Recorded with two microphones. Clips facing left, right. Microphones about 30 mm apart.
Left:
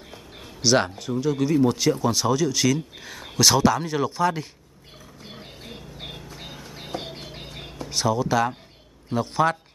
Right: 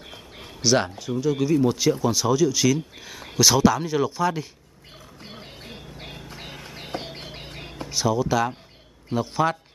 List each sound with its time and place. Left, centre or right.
0.6 s speech: centre
5.2 s a sound: centre
6.9 s music: right
7.9 s speech: centre